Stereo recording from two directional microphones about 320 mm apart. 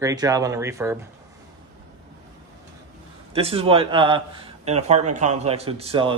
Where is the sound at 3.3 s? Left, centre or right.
Centre.